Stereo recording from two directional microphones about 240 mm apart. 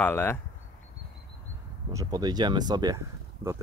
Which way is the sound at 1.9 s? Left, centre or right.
Centre.